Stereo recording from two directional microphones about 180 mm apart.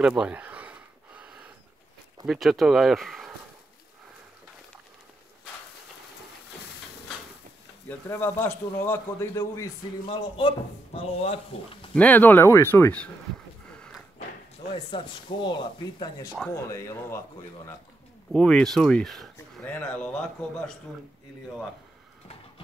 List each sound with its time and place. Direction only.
0.0 s a sound: 10° right (ahead or behind)
2.2 s speech: centre (ahead or behind)
7.9 s a man's voice: 10° left (ahead or behind)
10.0 s speech: 30° left (ahead or behind)
11.9 s a man's voice: 10° left (ahead or behind)
13.7 s a sound: 5° left (ahead or behind)
14.9 s a man's voice: 25° left (ahead or behind)
18.3 s a man's voice: 5° left (ahead or behind)